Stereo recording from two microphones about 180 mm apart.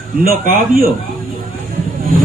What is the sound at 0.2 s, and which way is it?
Speech, 55° right (ahead or behind).